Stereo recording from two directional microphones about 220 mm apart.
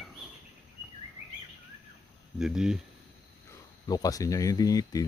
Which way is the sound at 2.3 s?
5° right (ahead or behind).